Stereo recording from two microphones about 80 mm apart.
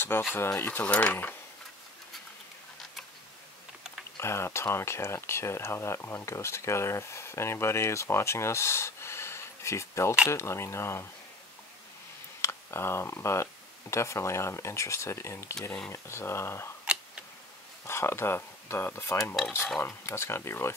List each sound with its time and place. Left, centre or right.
0.1 s speech: left
0.8 s speech: centre
4.2 s speech: left
12.4 s speech: left
16.8 s tick-tock: centre
17.8 s speech: left